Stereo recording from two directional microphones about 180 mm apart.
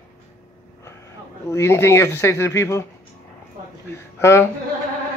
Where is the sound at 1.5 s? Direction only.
15° left (ahead or behind).